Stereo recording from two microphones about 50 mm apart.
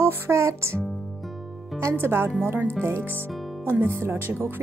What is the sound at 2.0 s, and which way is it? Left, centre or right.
Speech, right.